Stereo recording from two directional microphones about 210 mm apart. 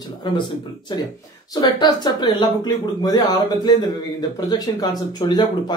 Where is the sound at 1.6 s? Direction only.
20° left (ahead or behind).